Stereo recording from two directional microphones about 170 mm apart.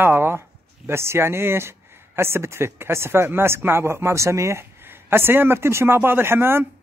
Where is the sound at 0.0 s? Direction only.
15° right (ahead or behind).